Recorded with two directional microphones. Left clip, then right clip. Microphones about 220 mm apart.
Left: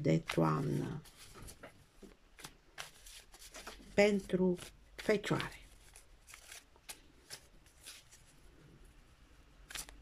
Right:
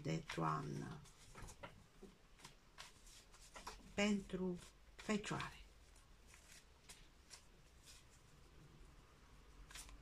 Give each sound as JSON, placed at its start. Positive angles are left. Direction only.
{"t": 0.0, "sound": "speech", "side_deg": 40}
{"t": 2.3, "sound": "shuffling cards", "side_deg": 45}
{"t": 3.9, "sound": "speech", "side_deg": 40}
{"t": 7.3, "sound": "shuffling cards", "side_deg": 45}
{"t": 7.9, "sound": "a sound", "side_deg": 45}
{"t": 9.7, "sound": "scissors", "side_deg": 40}